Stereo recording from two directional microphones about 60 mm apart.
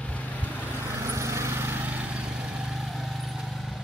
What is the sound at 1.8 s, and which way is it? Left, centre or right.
Vehicle, right.